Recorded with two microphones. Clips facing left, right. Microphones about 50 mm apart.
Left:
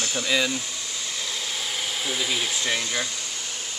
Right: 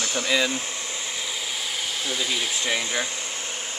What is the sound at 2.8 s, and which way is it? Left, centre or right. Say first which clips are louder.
Speech: right 1 dB; right.